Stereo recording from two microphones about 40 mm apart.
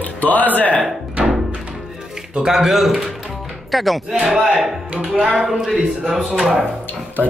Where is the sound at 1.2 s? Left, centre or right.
Right.